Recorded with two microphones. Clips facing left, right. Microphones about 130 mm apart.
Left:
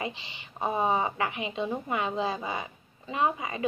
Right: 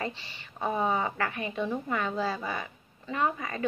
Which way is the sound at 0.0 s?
15° left (ahead or behind).